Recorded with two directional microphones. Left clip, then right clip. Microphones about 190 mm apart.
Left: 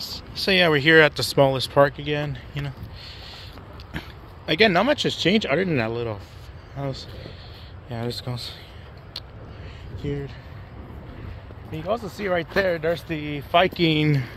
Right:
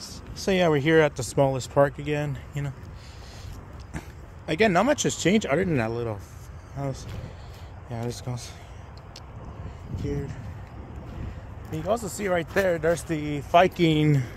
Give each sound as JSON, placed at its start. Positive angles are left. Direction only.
{"t": 0.0, "sound": "speech", "side_deg": -15}
{"t": 4.5, "sound": "speech", "side_deg": -5}
{"t": 11.7, "sound": "speech", "side_deg": -25}